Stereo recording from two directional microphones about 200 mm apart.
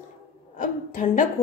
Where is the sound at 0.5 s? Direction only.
40° left (ahead or behind).